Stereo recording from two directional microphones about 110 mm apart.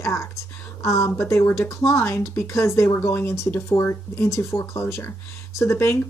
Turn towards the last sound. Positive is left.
turn(degrees=25)  # may be behind; listen again after turning